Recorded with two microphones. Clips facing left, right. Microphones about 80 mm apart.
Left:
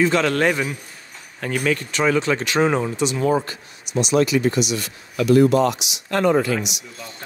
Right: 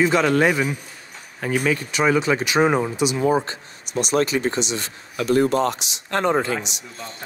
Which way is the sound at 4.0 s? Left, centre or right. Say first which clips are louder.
Left 2 dB; right.